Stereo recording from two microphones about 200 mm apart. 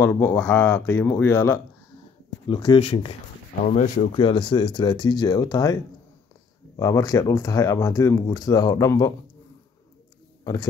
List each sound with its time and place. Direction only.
0.0 s speech: 10° left (ahead or behind)
2.4 s speech: 25° left (ahead or behind)
6.8 s speech: 15° left (ahead or behind)
10.4 s speech: 20° left (ahead or behind)